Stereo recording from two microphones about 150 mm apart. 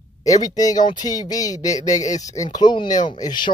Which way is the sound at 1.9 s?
55° left (ahead or behind).